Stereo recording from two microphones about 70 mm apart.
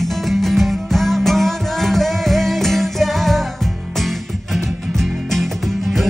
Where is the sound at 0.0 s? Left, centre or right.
Centre.